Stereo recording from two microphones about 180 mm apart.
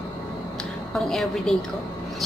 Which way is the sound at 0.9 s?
Centre (ahead or behind).